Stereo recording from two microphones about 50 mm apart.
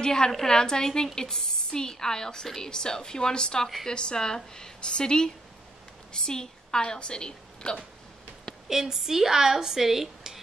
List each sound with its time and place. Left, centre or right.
0.0 s a woman's voice: centre
8.6 s speech: centre